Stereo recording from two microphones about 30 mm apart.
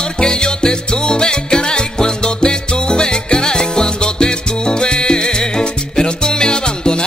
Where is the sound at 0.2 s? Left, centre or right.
Left.